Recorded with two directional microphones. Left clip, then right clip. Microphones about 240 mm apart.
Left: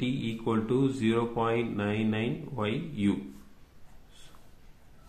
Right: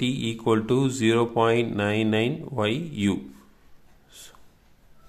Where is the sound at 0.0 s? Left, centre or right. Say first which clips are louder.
Right 6 dB; right.